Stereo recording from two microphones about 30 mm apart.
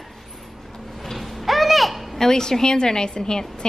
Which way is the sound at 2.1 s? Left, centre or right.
Centre.